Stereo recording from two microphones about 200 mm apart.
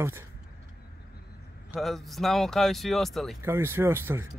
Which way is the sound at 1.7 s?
Centre (ahead or behind).